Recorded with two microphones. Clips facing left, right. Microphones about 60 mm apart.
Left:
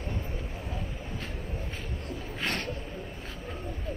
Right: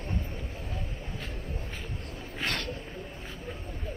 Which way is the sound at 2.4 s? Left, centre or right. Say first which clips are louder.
Left 1 dB; left.